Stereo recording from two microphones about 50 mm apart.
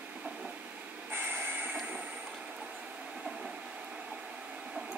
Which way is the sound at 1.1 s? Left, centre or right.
Right.